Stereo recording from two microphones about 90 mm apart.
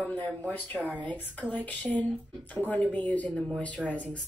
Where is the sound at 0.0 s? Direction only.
15° left (ahead or behind).